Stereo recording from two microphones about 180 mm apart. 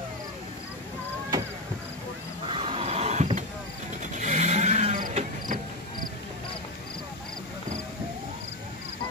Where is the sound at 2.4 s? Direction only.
30° right (ahead or behind).